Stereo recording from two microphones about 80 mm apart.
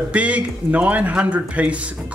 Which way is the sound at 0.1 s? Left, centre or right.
Centre.